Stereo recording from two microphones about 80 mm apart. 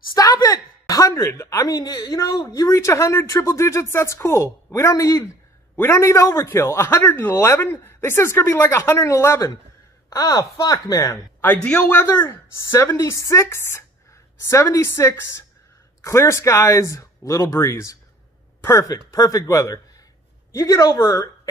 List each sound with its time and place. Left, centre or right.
0.1 s a woman's voice: left
1.8 s speech: left
7.0 s speech: left
10.0 s speech: left
11.4 s a man's voice: centre
12.0 s speech: left